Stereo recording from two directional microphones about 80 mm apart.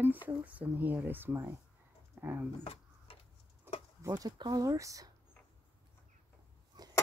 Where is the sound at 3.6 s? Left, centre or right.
Right.